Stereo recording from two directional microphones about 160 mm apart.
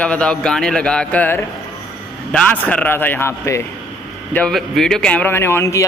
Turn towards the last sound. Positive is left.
turn(degrees=15)  # may be behind; listen again after turning